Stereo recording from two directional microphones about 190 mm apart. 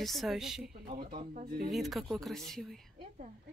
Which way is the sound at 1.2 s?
35° right (ahead or behind).